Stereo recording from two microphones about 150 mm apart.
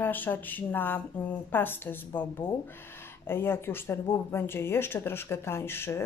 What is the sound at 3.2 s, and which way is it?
A woman's voice, 15° left (ahead or behind).